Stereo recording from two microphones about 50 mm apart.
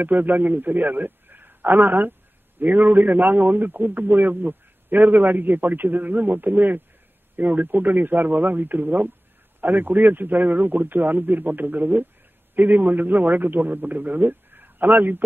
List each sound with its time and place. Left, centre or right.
0.0 s a man's voice: right